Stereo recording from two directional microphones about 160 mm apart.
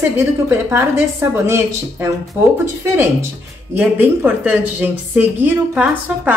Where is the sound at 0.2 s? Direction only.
15° right (ahead or behind).